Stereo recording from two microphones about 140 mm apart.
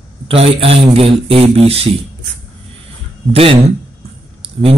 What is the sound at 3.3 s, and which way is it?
Speech, 45° right (ahead or behind).